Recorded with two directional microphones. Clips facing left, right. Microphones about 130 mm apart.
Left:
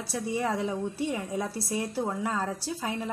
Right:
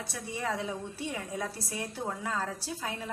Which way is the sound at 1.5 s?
35° left (ahead or behind).